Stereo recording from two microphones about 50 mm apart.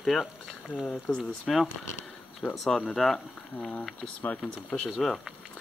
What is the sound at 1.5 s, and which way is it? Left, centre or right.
Speech, centre.